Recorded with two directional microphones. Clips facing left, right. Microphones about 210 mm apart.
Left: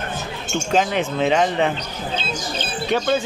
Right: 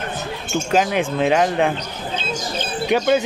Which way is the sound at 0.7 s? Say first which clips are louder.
Right 1 dB; 5° right (ahead or behind).